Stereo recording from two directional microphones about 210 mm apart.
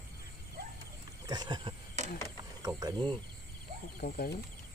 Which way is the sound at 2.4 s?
20° right (ahead or behind).